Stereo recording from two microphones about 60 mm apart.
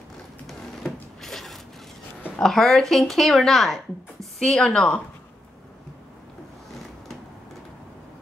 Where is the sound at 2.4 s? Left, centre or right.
Centre.